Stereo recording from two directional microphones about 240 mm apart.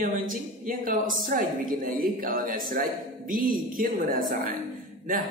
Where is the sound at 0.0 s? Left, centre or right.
Right.